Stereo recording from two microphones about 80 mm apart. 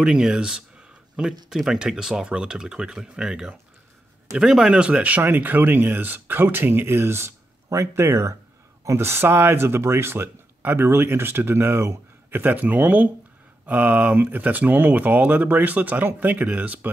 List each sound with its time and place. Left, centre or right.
0.0 s speech: centre